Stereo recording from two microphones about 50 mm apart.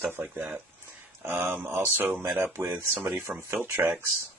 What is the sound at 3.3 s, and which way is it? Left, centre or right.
Speech, right.